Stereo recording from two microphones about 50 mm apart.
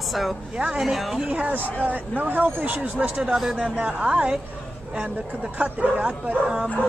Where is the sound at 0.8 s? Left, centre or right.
Centre.